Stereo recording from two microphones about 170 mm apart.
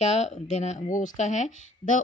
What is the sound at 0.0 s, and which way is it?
A woman's voice, 40° left (ahead or behind).